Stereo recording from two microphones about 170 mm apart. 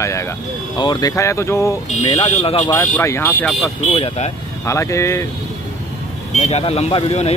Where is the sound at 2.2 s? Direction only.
40° left (ahead or behind).